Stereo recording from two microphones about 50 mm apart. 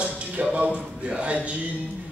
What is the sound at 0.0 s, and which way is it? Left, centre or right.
Speech, right.